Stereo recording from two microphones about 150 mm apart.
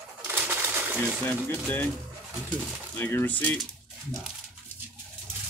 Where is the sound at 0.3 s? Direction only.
15° right (ahead or behind).